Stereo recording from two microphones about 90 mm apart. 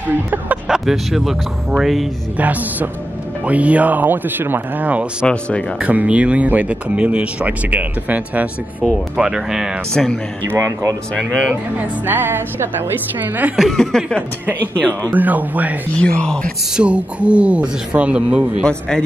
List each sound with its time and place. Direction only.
0.7 s speech: 5° right (ahead or behind)
2.3 s speech: 20° right (ahead or behind)
5.2 s speech: 10° left (ahead or behind)
5.8 s speech: 15° right (ahead or behind)
10.0 s speech: 5° left (ahead or behind)
10.6 s speech: 40° right (ahead or behind)
11.1 s speech: 5° left (ahead or behind)
12.1 s a woman's voice: 25° right (ahead or behind)
13.6 s speech: centre (ahead or behind)
15.1 s a woman's voice: 20° right (ahead or behind)
16.0 s speech: 10° left (ahead or behind)
16.7 s speech: 15° right (ahead or behind)
18.6 s speech: 10° left (ahead or behind)